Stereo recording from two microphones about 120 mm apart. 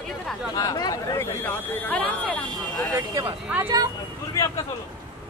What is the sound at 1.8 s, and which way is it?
Speech, 10° left (ahead or behind).